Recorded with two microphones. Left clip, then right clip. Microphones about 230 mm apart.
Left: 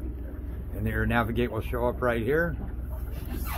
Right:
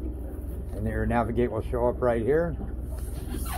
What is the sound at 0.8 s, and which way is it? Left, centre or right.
Speech, left.